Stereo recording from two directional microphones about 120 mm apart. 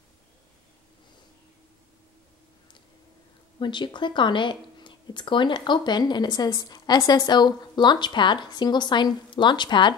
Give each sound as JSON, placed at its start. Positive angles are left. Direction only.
{"t": 3.5, "sound": "speech", "side_deg": 40}